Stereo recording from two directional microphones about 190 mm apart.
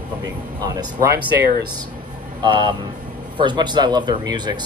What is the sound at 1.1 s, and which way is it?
Speech, 55° right (ahead or behind).